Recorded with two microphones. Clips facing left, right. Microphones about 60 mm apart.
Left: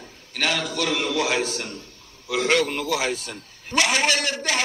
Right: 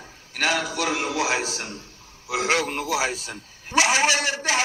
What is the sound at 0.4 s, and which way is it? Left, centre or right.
A man's voice, centre.